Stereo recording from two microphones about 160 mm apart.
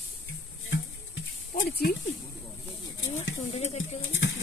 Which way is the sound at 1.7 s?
80° left.